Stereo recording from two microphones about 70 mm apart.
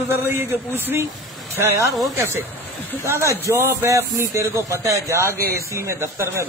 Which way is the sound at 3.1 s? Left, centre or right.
Right.